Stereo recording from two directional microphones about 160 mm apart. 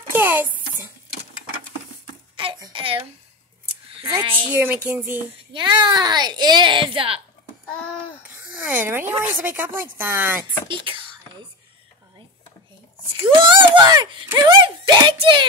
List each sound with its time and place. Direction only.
0.1 s a sound: 15° right (ahead or behind)
2.3 s a sound: 30° right (ahead or behind)
4.5 s speech: 10° right (ahead or behind)
5.5 s speech: 30° right (ahead or behind)
8.5 s speech: 10° right (ahead or behind)
10.7 s speech: 30° right (ahead or behind)
13.1 s speech: 30° right (ahead or behind)